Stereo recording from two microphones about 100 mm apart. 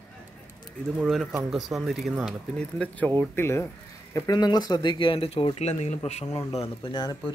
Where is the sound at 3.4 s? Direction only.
25° left (ahead or behind).